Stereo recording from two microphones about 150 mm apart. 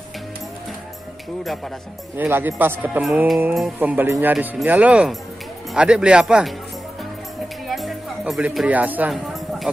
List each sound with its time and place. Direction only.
2.1 s speech: 15° right (ahead or behind)
7.6 s music: centre (ahead or behind)
9.3 s a sound: centre (ahead or behind)